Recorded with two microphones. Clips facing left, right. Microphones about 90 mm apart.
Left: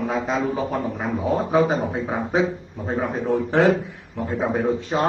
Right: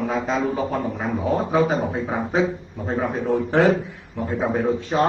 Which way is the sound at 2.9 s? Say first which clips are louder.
Even; 5° left (ahead or behind).